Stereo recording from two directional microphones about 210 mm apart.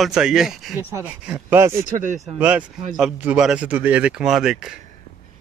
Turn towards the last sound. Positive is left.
turn(degrees=0)  # may be behind; listen again after turning